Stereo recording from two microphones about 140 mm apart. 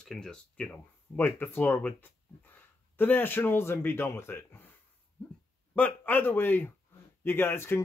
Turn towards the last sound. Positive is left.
turn(degrees=15)  # may be behind; listen again after turning